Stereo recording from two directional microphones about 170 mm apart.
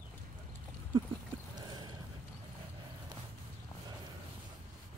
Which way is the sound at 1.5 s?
25° right (ahead or behind).